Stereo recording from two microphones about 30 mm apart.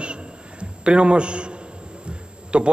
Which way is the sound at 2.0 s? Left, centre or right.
Right.